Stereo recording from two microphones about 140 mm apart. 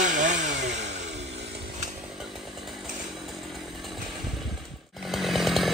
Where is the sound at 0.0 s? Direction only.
65° right (ahead or behind).